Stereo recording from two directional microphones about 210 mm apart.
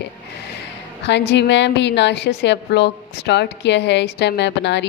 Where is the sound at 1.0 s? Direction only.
55° left (ahead or behind).